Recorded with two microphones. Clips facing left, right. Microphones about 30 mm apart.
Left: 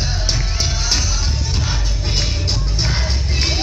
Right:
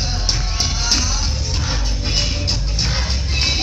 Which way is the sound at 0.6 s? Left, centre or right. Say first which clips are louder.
Right 2 dB; right.